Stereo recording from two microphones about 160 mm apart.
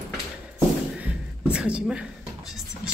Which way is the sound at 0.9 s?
10° right (ahead or behind).